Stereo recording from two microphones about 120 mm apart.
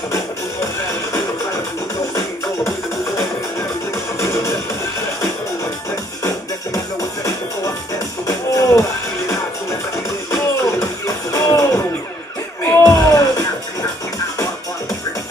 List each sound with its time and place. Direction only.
4.2 s music: 25° left (ahead or behind)
6.2 s music: 25° left (ahead or behind)
10.3 s music: 25° left (ahead or behind)